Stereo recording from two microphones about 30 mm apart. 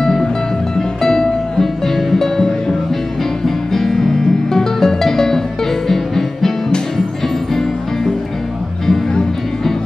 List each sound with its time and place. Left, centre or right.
0.0 s music: centre